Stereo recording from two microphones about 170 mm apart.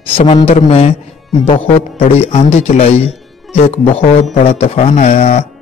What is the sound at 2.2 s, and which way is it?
A man's voice, 40° left (ahead or behind).